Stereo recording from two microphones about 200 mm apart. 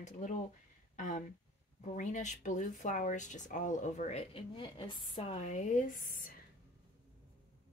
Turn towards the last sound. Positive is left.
turn(degrees=45)  # may be behind; listen again after turning